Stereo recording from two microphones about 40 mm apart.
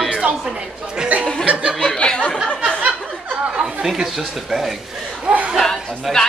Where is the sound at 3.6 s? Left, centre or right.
Centre.